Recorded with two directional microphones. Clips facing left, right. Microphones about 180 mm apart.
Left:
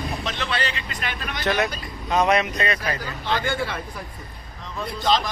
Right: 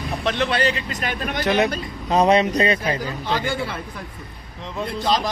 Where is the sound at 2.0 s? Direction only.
30° right (ahead or behind).